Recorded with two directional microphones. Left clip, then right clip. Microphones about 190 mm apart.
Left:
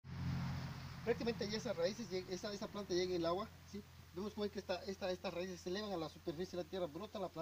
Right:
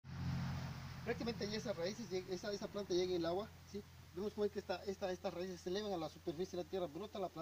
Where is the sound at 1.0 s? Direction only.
20° left (ahead or behind).